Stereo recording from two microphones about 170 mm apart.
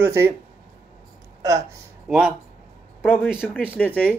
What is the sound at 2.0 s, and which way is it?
Speech, 5° right (ahead or behind).